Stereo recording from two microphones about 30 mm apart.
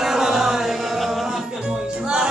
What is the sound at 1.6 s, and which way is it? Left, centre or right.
Music, right.